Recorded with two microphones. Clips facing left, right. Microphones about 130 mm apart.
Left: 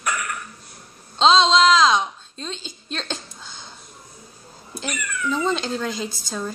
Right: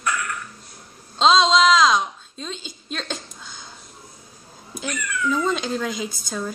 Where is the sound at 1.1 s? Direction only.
Centre (ahead or behind).